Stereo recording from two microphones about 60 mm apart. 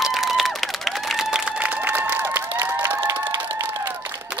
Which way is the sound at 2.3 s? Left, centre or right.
Right.